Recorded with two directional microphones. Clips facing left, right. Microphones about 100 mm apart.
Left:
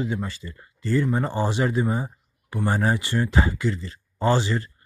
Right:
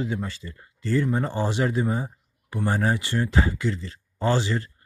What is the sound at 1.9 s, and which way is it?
Speech, 15° left (ahead or behind).